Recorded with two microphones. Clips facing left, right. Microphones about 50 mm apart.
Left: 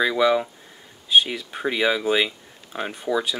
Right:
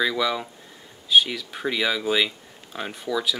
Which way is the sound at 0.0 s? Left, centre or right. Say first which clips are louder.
Left 5 dB; centre.